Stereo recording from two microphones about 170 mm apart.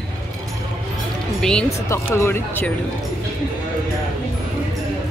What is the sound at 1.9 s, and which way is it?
Speech, 15° left (ahead or behind).